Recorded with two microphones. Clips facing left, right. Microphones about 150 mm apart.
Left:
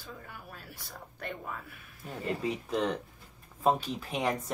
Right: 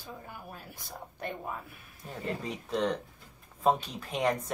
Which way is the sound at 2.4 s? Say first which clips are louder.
Even; centre (ahead or behind).